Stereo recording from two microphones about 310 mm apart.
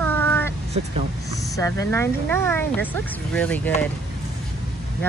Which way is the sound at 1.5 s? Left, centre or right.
Centre.